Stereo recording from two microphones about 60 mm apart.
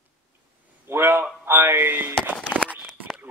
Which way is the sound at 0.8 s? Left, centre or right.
Right.